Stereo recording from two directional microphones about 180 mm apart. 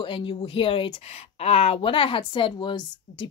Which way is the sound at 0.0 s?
30° left (ahead or behind).